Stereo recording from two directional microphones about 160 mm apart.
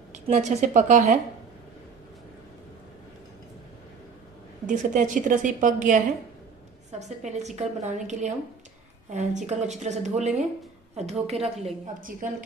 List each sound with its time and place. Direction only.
0.1 s a woman's voice: 50° right (ahead or behind)
4.6 s a woman's voice: 50° right (ahead or behind)
7.0 s a woman's voice: 45° right (ahead or behind)
11.8 s a woman's voice: 55° right (ahead or behind)